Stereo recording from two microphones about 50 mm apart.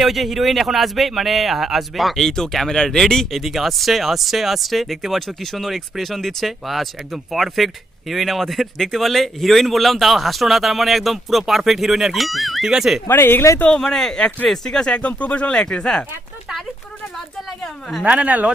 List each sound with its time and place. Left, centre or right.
0.0 s speech: centre
3.3 s speech: centre
13.1 s speech: left
13.7 s speech: centre
15.0 s speech: left
18.0 s speech: right